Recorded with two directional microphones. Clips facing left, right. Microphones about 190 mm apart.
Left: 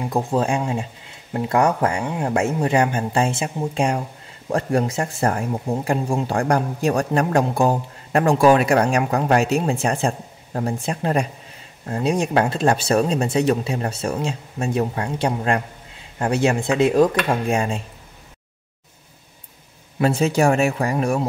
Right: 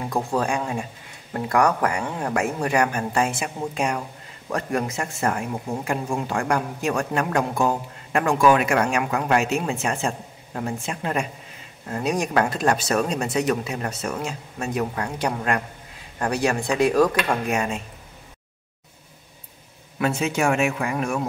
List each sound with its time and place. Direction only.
0.0 s speech: 20° left (ahead or behind)
20.0 s speech: 35° left (ahead or behind)